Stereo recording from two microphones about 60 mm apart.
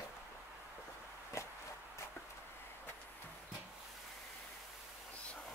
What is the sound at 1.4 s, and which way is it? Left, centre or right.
Walk, left.